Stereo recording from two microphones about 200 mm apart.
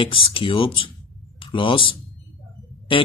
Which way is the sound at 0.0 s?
25° left (ahead or behind).